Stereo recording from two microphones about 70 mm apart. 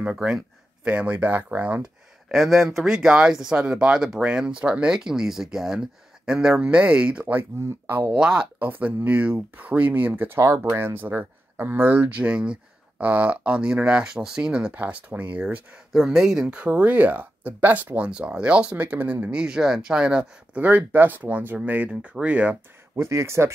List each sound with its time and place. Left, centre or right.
0.1 s speech: centre
0.8 s speech: right
2.3 s speech: centre; by 8.1 s right
8.1 s speech: centre
8.5 s speech: right
14.7 s speech: right
15.9 s speech: centre; by 22.6 s right
22.9 s speech: right